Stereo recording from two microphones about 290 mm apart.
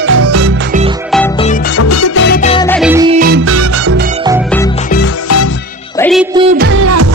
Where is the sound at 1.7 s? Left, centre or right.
Left.